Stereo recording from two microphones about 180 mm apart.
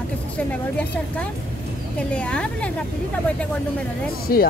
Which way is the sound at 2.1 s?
5° left (ahead or behind).